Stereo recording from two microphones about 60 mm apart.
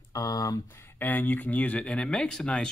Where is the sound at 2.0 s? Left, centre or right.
Centre.